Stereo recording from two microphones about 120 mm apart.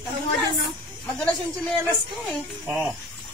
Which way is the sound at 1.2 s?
5° left (ahead or behind).